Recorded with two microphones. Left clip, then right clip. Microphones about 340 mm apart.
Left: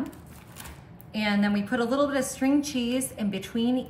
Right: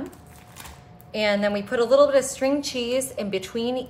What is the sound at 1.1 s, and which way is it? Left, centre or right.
A woman's voice, right.